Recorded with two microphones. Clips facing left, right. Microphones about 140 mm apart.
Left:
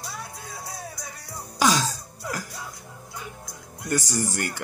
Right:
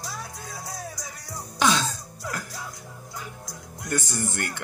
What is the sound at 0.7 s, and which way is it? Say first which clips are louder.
Music: right 1 dB; 25° left (ahead or behind).